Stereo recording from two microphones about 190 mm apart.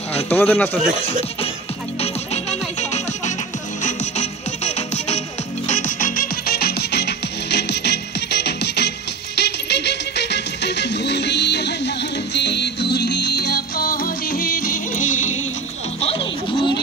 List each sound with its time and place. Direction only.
0.3 s speech: 10° left (ahead or behind)
2.0 s music: 35° left (ahead or behind)
16.0 s a sound: 30° left (ahead or behind)